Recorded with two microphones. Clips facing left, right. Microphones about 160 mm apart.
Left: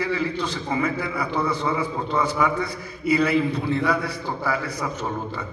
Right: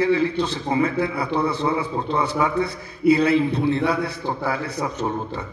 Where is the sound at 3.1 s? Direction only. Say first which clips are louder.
Left 1 dB; 25° right (ahead or behind).